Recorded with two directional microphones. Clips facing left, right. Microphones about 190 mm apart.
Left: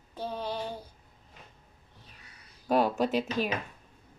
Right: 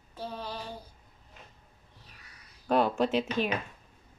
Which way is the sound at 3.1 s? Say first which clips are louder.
Even; 40° left (ahead or behind).